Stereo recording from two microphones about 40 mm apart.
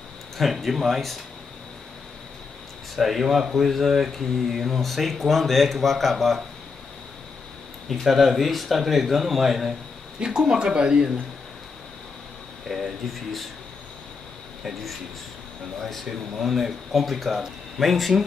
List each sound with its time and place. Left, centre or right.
0.4 s speech: centre
3.0 s speech: centre
7.9 s speech: centre
10.2 s speech: centre
12.6 s a sound: centre
15.8 s speech: centre
16.1 s speech: centre